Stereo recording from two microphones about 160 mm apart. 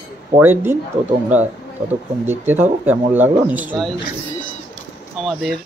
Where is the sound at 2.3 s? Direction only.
15° right (ahead or behind).